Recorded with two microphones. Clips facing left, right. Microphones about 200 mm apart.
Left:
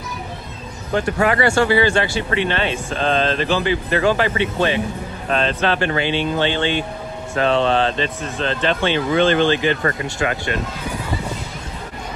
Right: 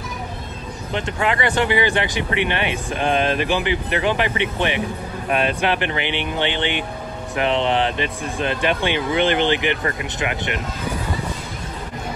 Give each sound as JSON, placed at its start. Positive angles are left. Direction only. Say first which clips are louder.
{"t": 1.2, "sound": "a man's voice", "louder": "left 3 dB", "side_deg": -20}